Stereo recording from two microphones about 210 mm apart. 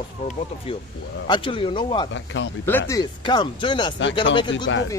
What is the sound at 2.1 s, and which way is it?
Speech, 65° left (ahead or behind).